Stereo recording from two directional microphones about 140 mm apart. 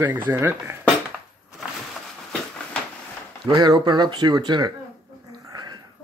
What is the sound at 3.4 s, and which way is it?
Speech, 30° right (ahead or behind).